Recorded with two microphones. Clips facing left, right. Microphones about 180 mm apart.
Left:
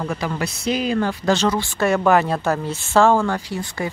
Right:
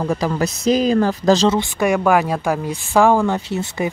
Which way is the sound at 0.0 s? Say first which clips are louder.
Right 5 dB; 35° right (ahead or behind).